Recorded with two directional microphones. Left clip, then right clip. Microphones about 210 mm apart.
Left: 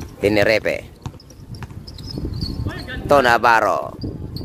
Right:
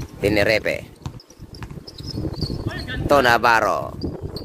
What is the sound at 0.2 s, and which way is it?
Speech, 10° left (ahead or behind).